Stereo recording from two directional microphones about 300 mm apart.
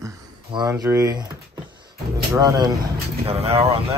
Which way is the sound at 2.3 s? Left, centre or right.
Centre.